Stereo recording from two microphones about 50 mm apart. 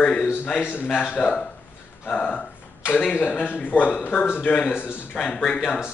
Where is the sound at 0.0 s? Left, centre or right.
Left.